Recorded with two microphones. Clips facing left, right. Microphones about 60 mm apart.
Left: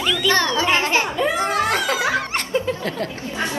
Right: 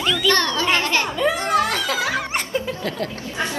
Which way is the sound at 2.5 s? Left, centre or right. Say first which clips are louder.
Left 2 dB; left.